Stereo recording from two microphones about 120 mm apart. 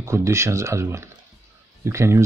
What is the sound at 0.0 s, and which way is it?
Speech, 25° right (ahead or behind).